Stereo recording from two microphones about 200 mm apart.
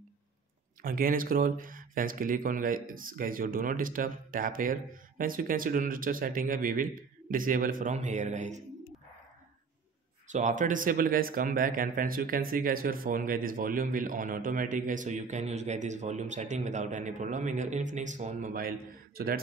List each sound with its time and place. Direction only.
0.8 s speech: 45° right (ahead or behind)
10.2 s speech: 35° right (ahead or behind)